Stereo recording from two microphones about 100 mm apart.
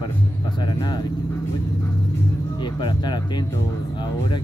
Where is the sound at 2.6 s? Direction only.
50° left (ahead or behind).